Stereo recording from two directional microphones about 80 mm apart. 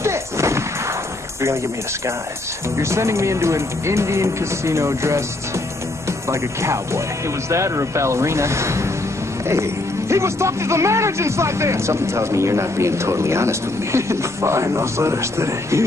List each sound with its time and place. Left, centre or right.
0.0 s artillery fire: right
2.8 s speech: right
6.6 s speech: right